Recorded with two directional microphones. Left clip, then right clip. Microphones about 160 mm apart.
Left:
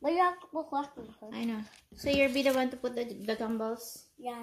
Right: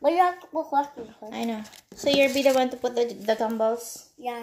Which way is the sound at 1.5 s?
30° left (ahead or behind).